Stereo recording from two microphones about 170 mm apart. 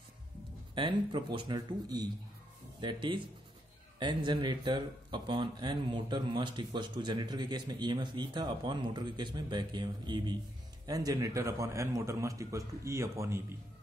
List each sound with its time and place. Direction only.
0.7 s a man's voice: 30° right (ahead or behind)